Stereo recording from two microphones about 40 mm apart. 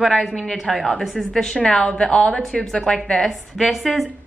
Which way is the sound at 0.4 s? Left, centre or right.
Centre.